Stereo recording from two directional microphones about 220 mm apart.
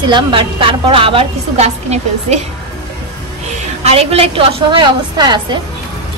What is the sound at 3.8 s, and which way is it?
A woman's voice, 25° right (ahead or behind).